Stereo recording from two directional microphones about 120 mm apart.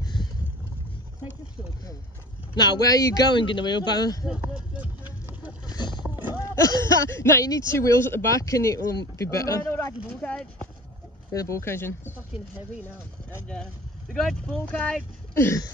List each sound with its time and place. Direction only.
0.0 s vehicle: 35° left (ahead or behind)
2.5 s speech: 35° left (ahead or behind)
4.3 s a sound: 10° right (ahead or behind)
5.7 s roaring cats: 35° left (ahead or behind)
6.4 s speech: 25° left (ahead or behind)
10.0 s speech: 10° left (ahead or behind)
11.3 s speech: 25° left (ahead or behind)
14.1 s speech: 5° left (ahead or behind)
14.7 s speech: 15° left (ahead or behind)